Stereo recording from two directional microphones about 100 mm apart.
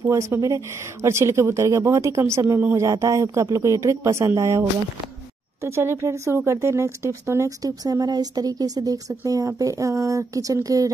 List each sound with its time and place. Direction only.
0.1 s speech: 30° right (ahead or behind)